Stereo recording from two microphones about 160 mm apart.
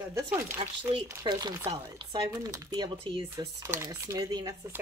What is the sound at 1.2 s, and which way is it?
Speech, 25° right (ahead or behind).